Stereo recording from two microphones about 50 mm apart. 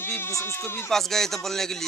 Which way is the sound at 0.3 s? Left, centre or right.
Left.